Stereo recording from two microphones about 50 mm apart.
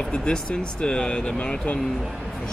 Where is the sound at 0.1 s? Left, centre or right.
Centre.